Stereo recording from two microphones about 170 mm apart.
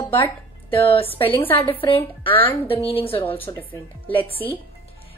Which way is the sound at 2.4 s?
35° left (ahead or behind).